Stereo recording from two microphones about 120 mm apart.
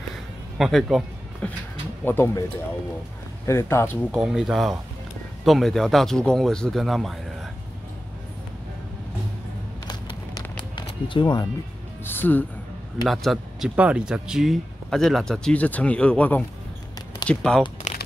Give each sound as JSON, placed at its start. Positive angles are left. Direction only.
{"t": 0.6, "sound": "speech", "side_deg": 0}
{"t": 1.4, "sound": "speech", "side_deg": 10}
{"t": 3.4, "sound": "speech", "side_deg": 20}
{"t": 4.2, "sound": "speech", "side_deg": -5}
{"t": 9.8, "sound": "music", "side_deg": 35}
{"t": 12.0, "sound": "speech", "side_deg": 15}
{"t": 13.0, "sound": "a man's voice", "side_deg": 0}
{"t": 17.9, "sound": "crumpling", "side_deg": 75}